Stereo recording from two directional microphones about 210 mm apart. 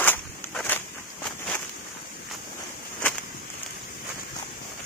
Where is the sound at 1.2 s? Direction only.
5° left (ahead or behind).